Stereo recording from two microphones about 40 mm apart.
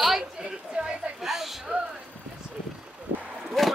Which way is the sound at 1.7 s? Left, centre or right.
Right.